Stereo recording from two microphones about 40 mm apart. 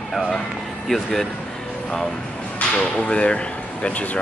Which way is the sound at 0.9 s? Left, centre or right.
Centre.